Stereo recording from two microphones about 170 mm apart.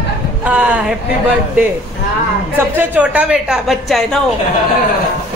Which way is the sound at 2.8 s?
10° right (ahead or behind).